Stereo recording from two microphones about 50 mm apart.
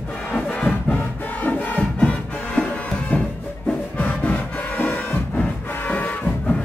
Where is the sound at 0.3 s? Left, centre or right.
Left.